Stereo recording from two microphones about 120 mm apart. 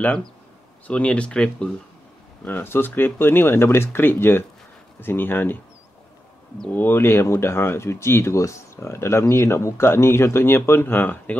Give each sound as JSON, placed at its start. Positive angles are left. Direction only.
{"t": 0.0, "sound": "speech", "side_deg": 10}
{"t": 6.7, "sound": "speech", "side_deg": 20}